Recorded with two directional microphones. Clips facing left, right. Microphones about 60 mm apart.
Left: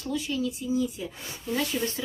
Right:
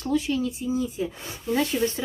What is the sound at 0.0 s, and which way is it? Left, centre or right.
Speech, right.